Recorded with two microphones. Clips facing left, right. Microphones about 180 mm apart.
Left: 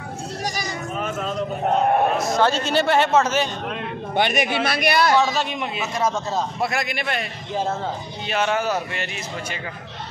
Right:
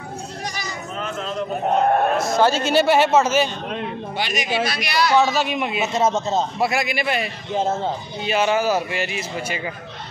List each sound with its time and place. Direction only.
2.2 s a man's voice: 5° right (ahead or behind)
4.2 s speech: 60° left (ahead or behind)
5.2 s a man's voice: 5° right (ahead or behind)
5.9 s a man's voice: 25° right (ahead or behind)
6.6 s a man's voice: 5° right (ahead or behind)
8.3 s a man's voice: 5° right (ahead or behind)